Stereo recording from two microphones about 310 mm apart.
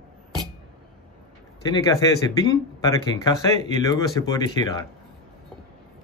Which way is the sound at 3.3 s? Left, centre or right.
Centre.